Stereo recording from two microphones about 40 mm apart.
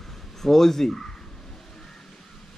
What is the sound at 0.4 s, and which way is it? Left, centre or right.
Speech, centre.